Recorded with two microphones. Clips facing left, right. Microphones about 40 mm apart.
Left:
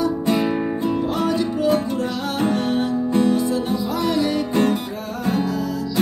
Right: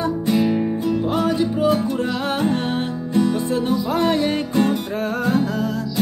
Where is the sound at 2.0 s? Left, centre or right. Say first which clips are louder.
Right 1 dB; right.